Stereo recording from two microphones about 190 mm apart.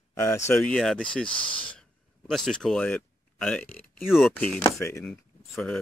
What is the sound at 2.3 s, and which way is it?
Speech, centre (ahead or behind).